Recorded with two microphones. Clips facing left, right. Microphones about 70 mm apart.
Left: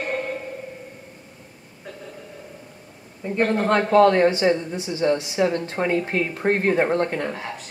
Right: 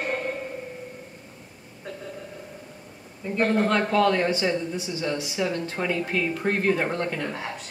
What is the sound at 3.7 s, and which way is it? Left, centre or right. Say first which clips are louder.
Speech: left 5 dB; left.